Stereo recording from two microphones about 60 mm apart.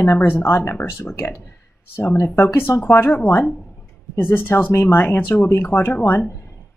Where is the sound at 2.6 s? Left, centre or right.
Left.